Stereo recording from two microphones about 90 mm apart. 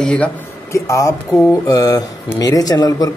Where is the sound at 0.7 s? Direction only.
35° left (ahead or behind).